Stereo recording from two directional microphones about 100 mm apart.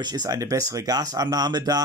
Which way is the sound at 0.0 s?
45° right (ahead or behind).